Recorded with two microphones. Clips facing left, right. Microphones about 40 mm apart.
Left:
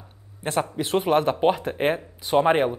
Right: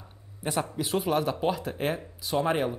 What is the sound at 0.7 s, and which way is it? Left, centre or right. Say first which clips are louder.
Speech: left 4 dB; centre.